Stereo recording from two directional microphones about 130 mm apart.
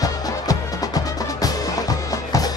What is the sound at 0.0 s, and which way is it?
Music, 30° left (ahead or behind).